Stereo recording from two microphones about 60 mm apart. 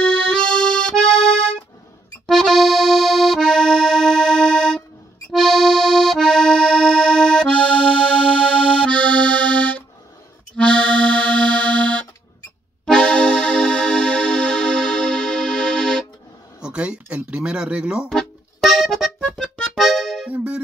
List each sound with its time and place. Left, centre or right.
0.3 s accordion: centre
2.2 s accordion: centre
7.4 s accordion: left
8.8 s accordion: centre
10.5 s music: centre
16.6 s a sound: centre
18.2 s accordion: centre
19.2 s music: centre
20.2 s music: right